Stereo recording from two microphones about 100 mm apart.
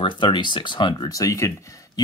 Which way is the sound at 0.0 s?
55° left (ahead or behind).